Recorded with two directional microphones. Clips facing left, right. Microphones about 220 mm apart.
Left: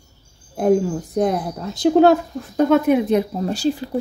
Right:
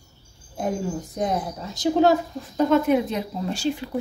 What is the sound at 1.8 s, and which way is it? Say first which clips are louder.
Speech: left 5 dB; 60° left (ahead or behind).